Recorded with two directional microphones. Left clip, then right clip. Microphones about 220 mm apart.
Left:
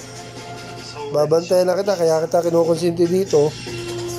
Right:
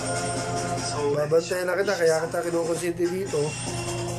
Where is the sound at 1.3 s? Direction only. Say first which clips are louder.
Left 7 dB; 15° left (ahead or behind).